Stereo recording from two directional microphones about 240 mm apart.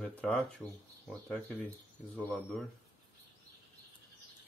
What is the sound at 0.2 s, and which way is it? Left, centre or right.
Speech, centre.